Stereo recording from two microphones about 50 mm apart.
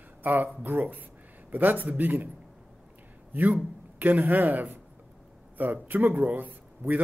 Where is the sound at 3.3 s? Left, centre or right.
Right.